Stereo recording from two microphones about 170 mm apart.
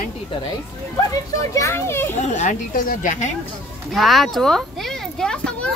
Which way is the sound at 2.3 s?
50° left (ahead or behind).